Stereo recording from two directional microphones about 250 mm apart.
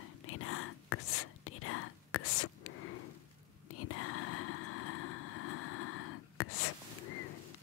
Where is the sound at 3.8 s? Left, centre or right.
Left.